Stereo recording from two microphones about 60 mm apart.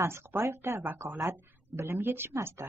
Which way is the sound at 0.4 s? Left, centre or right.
Right.